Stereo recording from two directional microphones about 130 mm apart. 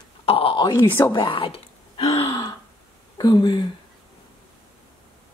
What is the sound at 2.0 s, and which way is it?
Gasp, 30° left (ahead or behind).